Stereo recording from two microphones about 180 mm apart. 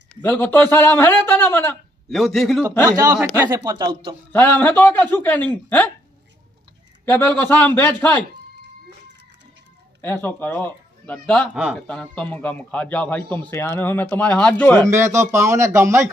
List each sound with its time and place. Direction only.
0.1 s a man's voice: 10° left (ahead or behind)
2.0 s a man's voice: centre (ahead or behind)
3.0 s speech: 15° right (ahead or behind)
4.3 s a man's voice: 10° left (ahead or behind)
7.1 s a man's voice: 10° left (ahead or behind)
10.0 s a man's voice: 10° left (ahead or behind)
14.8 s speech: 15° right (ahead or behind)